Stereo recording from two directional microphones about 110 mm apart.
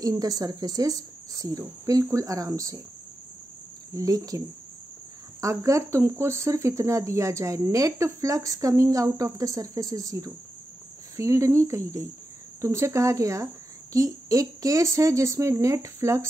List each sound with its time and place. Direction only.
0.0 s speech: 35° right (ahead or behind)
3.9 s speech: 30° right (ahead or behind)
5.4 s speech: 30° right (ahead or behind)